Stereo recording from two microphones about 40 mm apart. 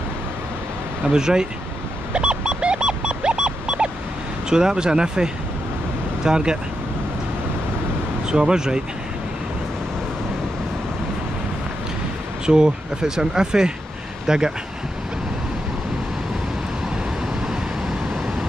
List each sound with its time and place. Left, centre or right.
1.0 s speech: centre
2.1 s a sound: right
4.5 s speech: centre
8.3 s speech: centre
12.4 s speech: centre